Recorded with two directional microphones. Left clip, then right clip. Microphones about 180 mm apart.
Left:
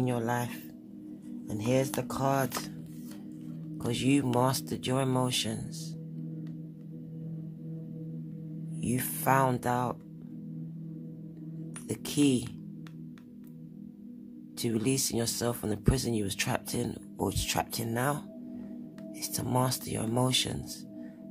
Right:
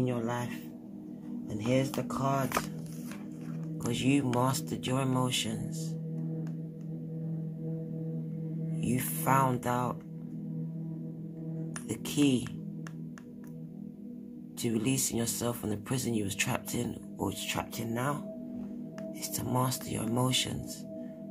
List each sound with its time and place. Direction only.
0.0 s speech: 45° left (ahead or behind)
3.7 s speech: 30° left (ahead or behind)
8.7 s speech: 30° left (ahead or behind)
11.9 s speech: 30° left (ahead or behind)
14.6 s speech: 30° left (ahead or behind)
19.2 s speech: 30° left (ahead or behind)